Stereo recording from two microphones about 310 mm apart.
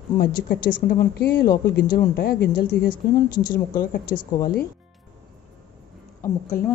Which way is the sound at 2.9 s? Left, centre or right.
Centre.